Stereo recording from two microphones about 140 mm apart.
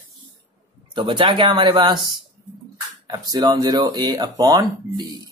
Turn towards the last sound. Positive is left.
turn(degrees=-30)  # may be behind; listen again after turning